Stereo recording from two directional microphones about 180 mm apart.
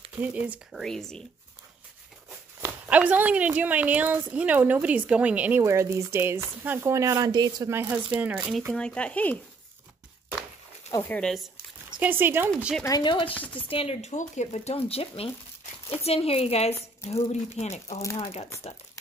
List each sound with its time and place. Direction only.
0.2 s speech: 10° right (ahead or behind)
2.6 s speech: 10° right (ahead or behind); by 9.4 s 10° left (ahead or behind)
10.9 s speech: 10° left (ahead or behind)
12.0 s speech: 10° right (ahead or behind)
12.8 s speech: 25° left (ahead or behind)